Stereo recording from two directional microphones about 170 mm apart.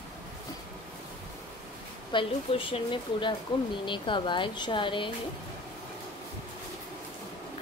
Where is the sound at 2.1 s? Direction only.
30° left (ahead or behind).